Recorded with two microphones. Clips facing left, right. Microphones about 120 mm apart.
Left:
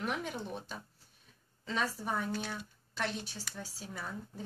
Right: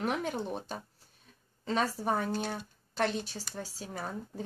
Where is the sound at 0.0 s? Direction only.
35° right (ahead or behind).